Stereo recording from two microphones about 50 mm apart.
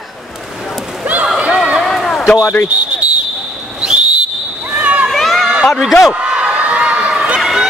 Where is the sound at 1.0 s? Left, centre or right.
Right.